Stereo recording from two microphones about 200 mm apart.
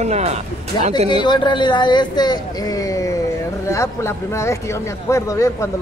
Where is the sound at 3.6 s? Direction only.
15° left (ahead or behind).